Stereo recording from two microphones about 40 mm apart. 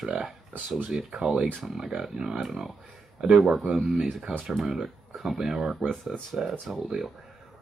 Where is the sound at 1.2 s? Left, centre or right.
Right.